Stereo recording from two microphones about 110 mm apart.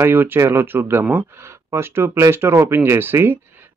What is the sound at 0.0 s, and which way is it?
A man's voice, 20° right (ahead or behind).